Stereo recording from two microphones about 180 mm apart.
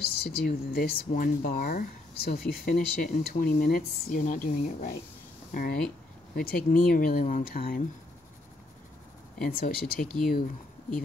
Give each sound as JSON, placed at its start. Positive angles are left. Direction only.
{"t": 0.0, "sound": "speech", "side_deg": 60}
{"t": 9.4, "sound": "speech", "side_deg": 50}